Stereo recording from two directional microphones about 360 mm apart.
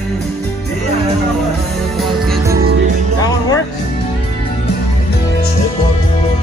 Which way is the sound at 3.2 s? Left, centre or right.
Centre.